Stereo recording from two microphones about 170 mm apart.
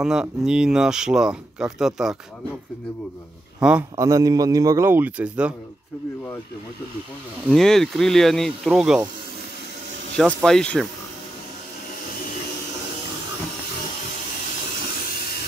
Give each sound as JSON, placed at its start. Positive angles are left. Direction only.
{"t": 0.0, "sound": "speech", "side_deg": -5}
{"t": 3.9, "sound": "speech", "side_deg": -20}
{"t": 7.4, "sound": "speech", "side_deg": 0}
{"t": 10.4, "sound": "speech", "side_deg": 5}